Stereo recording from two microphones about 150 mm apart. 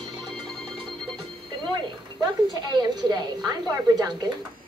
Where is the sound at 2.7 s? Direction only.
30° right (ahead or behind).